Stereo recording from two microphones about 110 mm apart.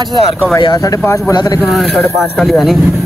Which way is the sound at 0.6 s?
35° left (ahead or behind).